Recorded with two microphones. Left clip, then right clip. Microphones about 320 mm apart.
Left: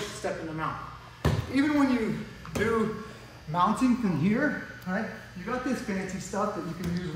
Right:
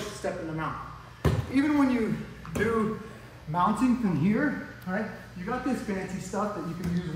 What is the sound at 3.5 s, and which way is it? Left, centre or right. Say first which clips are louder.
Speech: even; centre.